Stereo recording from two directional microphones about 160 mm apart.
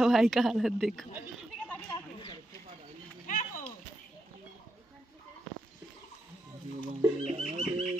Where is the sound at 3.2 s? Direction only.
55° left (ahead or behind).